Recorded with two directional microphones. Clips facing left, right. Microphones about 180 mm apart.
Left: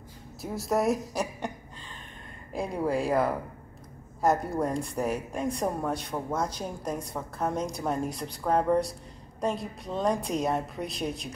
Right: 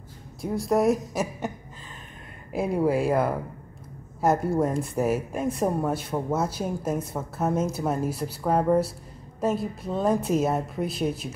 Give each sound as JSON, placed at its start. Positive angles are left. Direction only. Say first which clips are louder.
{"t": 0.4, "sound": "a woman's voice", "louder": "right 4 dB", "side_deg": 0}
{"t": 2.5, "sound": "a woman's voice", "louder": "right 5 dB", "side_deg": -5}